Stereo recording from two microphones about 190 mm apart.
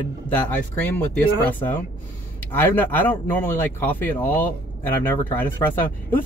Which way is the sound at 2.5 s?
10° left (ahead or behind).